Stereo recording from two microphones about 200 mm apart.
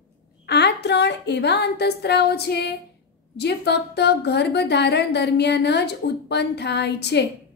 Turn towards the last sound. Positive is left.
turn(degrees=55)  # may be behind; listen again after turning